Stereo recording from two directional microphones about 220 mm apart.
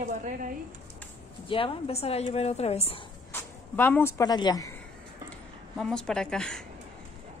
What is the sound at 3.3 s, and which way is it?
Speech, 10° left (ahead or behind).